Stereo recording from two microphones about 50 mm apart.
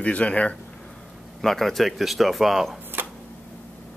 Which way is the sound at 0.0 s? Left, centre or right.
Left.